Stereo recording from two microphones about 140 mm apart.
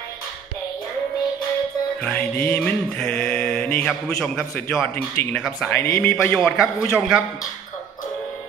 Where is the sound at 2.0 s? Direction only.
10° left (ahead or behind).